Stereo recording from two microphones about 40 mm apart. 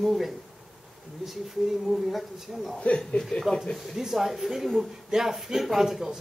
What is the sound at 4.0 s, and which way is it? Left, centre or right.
A man's voice, centre.